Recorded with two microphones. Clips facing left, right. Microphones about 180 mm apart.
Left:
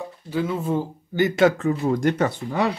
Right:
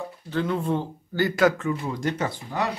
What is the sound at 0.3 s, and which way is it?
Speech, 5° left (ahead or behind).